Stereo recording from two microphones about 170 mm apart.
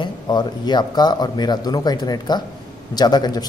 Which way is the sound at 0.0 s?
25° left (ahead or behind).